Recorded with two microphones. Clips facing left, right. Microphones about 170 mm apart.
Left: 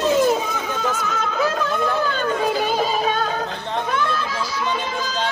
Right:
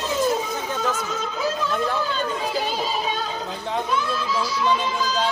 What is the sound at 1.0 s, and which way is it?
Chatter, 65° left (ahead or behind).